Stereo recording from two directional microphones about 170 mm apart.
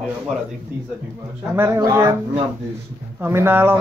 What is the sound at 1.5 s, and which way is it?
Speech, 15° right (ahead or behind).